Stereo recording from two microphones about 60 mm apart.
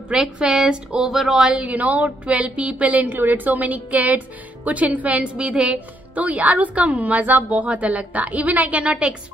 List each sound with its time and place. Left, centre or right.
0.1 s a woman's voice: centre
1.0 s a woman's voice: centre
1.7 s a woman's voice: right